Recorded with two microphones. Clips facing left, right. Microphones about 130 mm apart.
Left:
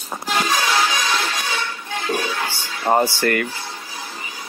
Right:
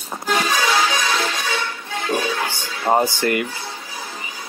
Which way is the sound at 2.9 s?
15° right (ahead or behind).